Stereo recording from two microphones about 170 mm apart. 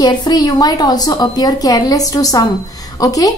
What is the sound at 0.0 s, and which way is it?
A woman's voice, 25° left (ahead or behind).